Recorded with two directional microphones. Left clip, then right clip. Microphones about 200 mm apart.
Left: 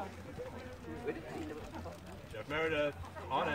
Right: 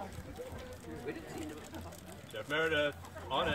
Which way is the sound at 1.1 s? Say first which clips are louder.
Left 2 dB; 50° right (ahead or behind).